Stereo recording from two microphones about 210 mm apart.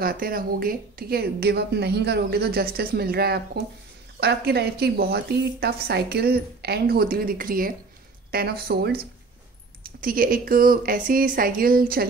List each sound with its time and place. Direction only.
0.0 s a woman's voice: 45° right (ahead or behind)